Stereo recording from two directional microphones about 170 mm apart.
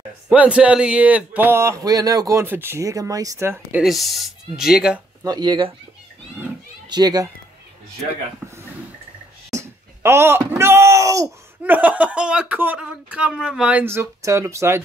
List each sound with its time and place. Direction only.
0.3 s speech: 5° right (ahead or behind)
3.8 s speech: centre (ahead or behind)
5.2 s speech: 25° right (ahead or behind)
6.9 s speech: 25° right (ahead or behind)
9.5 s speech: 15° right (ahead or behind)